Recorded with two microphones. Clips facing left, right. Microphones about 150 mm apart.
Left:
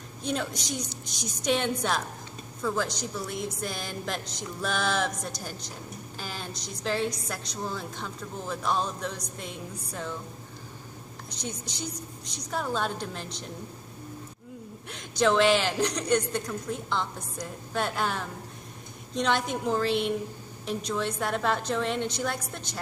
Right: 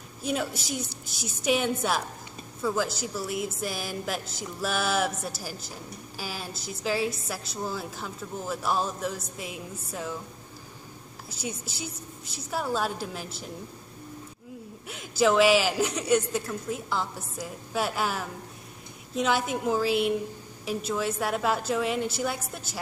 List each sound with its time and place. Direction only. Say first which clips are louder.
0.2 s a woman's voice: right 1 dB; 5° right (ahead or behind)
11.2 s a woman's voice: right 2 dB; 5° right (ahead or behind)
14.9 s a woman's voice: right 1 dB; 5° right (ahead or behind)